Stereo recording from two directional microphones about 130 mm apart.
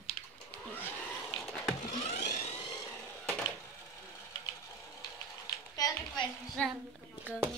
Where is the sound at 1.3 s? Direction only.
10° left (ahead or behind).